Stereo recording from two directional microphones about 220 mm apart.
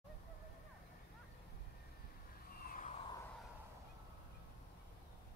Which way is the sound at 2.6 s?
40° left (ahead or behind).